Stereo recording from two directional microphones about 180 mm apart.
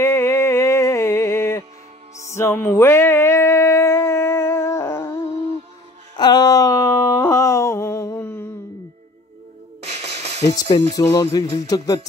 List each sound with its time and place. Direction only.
0.0 s music: 15° left (ahead or behind)
2.3 s a sound: 15° left (ahead or behind)
9.8 s music: 35° right (ahead or behind)
11.0 s music: 20° left (ahead or behind)